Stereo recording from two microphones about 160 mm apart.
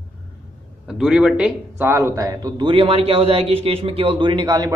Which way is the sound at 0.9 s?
5° right (ahead or behind).